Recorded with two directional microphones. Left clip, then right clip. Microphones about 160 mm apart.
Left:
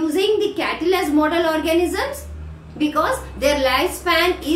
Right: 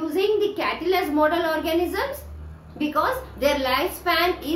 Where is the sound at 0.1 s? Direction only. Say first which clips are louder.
Even; 10° right (ahead or behind).